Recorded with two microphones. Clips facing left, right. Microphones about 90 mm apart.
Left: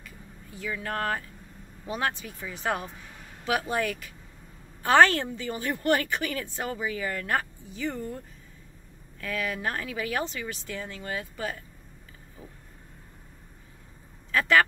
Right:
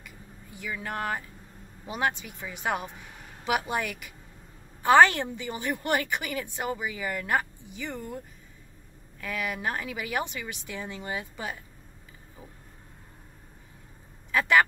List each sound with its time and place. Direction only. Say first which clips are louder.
0.6 s a woman's voice: left 2 dB; 15° right (ahead or behind)
9.2 s a woman's voice: left 1 dB; 15° right (ahead or behind)